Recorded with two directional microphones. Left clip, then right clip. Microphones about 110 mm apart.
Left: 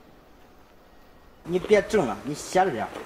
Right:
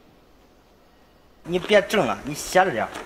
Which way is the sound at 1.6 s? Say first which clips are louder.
Right 2 dB; 30° right (ahead or behind).